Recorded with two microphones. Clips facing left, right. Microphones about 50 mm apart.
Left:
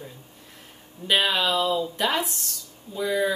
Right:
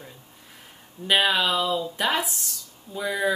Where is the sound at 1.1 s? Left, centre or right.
Centre.